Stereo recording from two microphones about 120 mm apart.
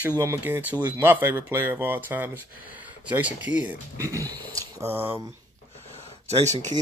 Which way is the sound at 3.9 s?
25° right (ahead or behind).